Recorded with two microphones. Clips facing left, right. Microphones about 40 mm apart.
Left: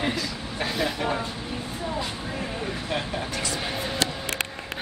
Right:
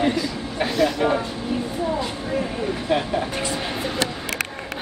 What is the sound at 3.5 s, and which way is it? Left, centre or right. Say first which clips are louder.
Music: right 3 dB; centre.